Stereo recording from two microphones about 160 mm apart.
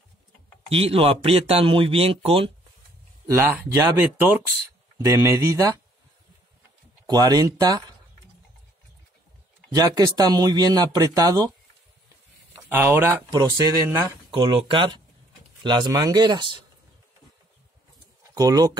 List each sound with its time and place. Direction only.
0.7 s speech: 40° right (ahead or behind)
3.3 s speech: 15° right (ahead or behind)
7.1 s speech: 25° right (ahead or behind)
9.8 s speech: 25° right (ahead or behind)
12.7 s speech: 20° right (ahead or behind)
14.3 s speech: 30° right (ahead or behind)
18.3 s speech: 25° right (ahead or behind)